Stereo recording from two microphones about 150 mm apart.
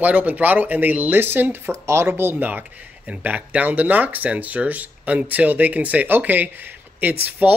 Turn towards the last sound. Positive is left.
turn(degrees=-10)  # may be behind; listen again after turning